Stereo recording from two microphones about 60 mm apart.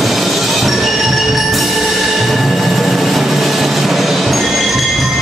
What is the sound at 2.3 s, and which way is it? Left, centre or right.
Vehicle, centre.